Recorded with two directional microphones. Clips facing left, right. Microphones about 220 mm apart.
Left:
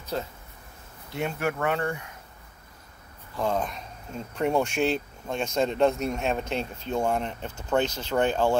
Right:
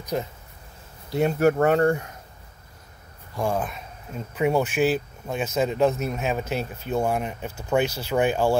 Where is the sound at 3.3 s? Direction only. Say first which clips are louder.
Right 1 dB; 5° right (ahead or behind).